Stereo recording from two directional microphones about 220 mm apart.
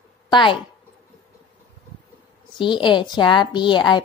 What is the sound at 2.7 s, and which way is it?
A woman's voice, 20° left (ahead or behind).